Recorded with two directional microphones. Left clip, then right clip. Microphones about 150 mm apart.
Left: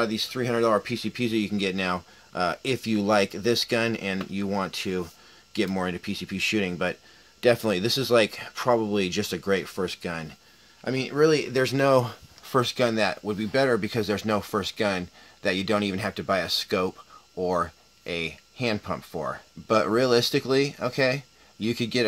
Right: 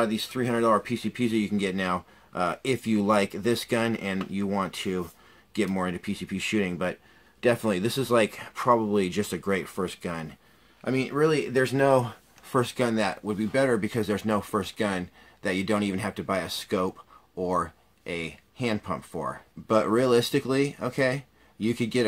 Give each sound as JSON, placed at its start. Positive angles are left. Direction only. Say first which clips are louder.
{"t": 0.0, "sound": "speech", "louder": "left 1 dB", "side_deg": 30}